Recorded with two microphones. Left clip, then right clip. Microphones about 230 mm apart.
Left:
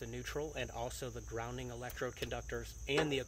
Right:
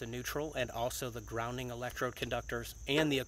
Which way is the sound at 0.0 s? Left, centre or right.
Right.